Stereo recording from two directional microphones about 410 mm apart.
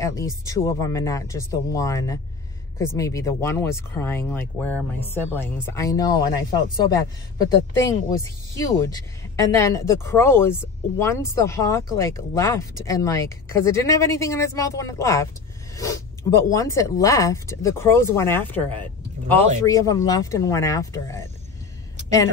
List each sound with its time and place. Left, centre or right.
0.0 s a woman's voice: centre